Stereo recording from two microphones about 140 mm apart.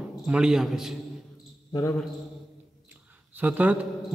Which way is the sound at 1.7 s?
25° left (ahead or behind).